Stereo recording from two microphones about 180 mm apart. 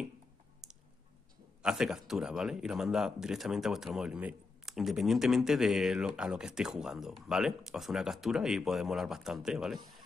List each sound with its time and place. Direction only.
1.6 s speech: 5° right (ahead or behind)